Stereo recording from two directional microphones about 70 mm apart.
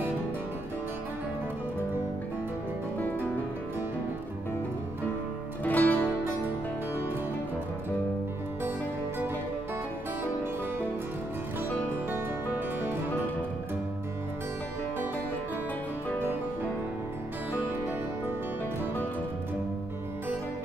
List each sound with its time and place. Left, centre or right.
5.6 s music: left